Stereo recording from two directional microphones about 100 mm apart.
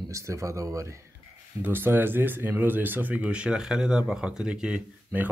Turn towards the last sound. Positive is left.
turn(degrees=-15)  # may be behind; listen again after turning